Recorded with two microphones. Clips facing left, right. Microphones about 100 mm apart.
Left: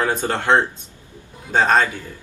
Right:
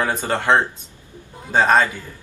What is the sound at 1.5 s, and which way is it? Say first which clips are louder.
Speech: right 1 dB; 10° right (ahead or behind).